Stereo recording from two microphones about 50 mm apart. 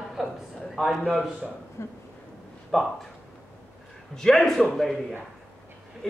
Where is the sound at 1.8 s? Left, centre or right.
Left.